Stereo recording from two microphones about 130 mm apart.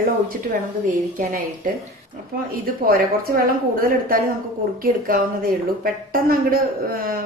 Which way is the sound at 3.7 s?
90° right.